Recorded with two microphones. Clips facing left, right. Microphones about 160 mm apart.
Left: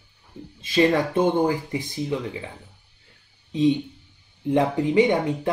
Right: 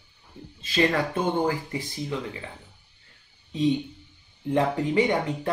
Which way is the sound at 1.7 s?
20° left (ahead or behind).